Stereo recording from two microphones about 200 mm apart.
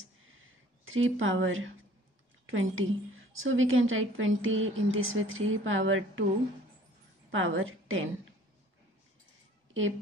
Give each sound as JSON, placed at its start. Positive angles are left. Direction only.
{"t": 0.8, "sound": "a woman's voice", "side_deg": -75}
{"t": 7.2, "sound": "a woman's voice", "side_deg": -75}